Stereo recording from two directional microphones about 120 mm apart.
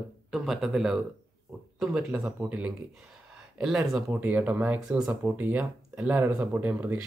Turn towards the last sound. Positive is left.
turn(degrees=-15)  # may be behind; listen again after turning